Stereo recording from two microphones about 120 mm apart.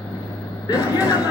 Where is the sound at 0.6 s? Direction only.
35° left (ahead or behind).